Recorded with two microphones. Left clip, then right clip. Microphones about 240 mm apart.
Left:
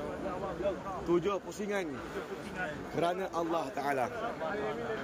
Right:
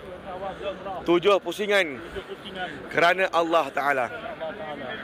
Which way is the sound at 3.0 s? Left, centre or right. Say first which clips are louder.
Right 12 dB; right.